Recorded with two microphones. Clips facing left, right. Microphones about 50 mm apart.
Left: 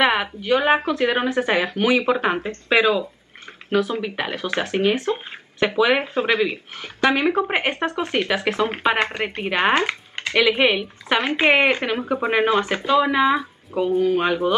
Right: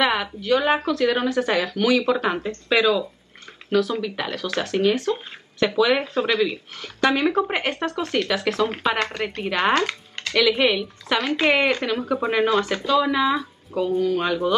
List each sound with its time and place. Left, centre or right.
0.0 s speech: left